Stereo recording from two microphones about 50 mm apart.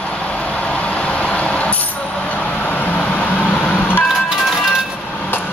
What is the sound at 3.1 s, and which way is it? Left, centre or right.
Vehicle, left.